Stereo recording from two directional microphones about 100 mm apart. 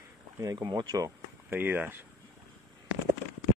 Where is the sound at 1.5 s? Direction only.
20° right (ahead or behind).